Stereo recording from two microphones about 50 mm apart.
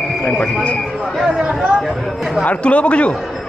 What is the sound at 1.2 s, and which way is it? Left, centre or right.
Speech, centre.